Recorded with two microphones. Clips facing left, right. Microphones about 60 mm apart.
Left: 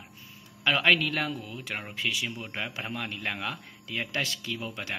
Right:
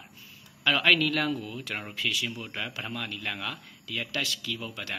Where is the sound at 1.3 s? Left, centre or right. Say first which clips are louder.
Right 3 dB; centre.